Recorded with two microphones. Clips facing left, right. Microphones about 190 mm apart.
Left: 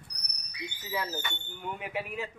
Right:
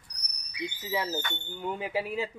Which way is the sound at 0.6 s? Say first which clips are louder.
Right 4 dB; 25° right (ahead or behind).